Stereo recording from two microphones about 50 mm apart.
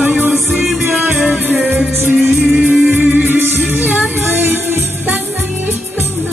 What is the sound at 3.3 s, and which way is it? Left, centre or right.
Music, right.